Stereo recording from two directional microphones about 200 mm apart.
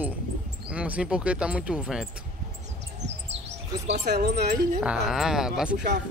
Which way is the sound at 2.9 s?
35° right (ahead or behind).